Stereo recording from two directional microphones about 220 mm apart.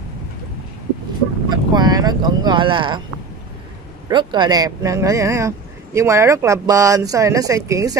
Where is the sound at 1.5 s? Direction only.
20° right (ahead or behind).